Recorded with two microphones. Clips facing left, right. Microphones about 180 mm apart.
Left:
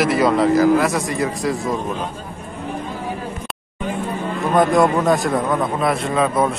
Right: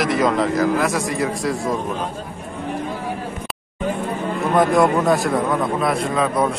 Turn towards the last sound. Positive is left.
turn(degrees=0)  # may be behind; listen again after turning